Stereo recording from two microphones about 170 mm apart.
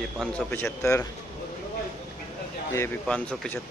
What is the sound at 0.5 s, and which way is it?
Speech, 10° left (ahead or behind).